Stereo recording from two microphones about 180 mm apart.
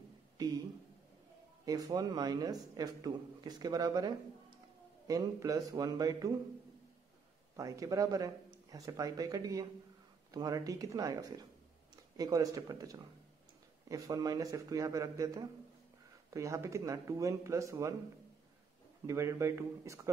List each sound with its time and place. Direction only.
1.7 s a man's voice: 20° right (ahead or behind)
7.5 s a man's voice: 20° right (ahead or behind)
19.0 s speech: 15° right (ahead or behind)